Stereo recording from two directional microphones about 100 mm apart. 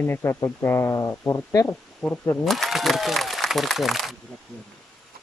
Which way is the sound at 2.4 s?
Centre (ahead or behind).